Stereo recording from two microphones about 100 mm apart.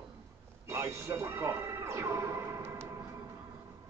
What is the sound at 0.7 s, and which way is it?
Music, 30° right (ahead or behind).